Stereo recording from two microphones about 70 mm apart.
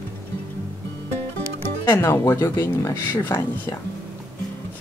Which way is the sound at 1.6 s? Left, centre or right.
Left.